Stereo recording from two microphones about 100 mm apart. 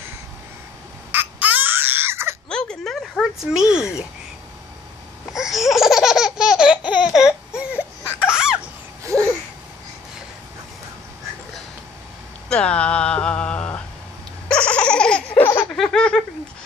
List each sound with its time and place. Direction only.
1.1 s baby cry: 20° right (ahead or behind)
2.5 s a sound: 5° left (ahead or behind)
5.3 s laughter: 5° right (ahead or behind)
6.9 s a sound: 10° right (ahead or behind)
8.2 s laughter: 10° right (ahead or behind)
9.1 s babbling: 30° right (ahead or behind)
12.4 s a sound: 10° left (ahead or behind)
14.5 s laughter: 10° left (ahead or behind)
15.7 s laughter: 5° left (ahead or behind)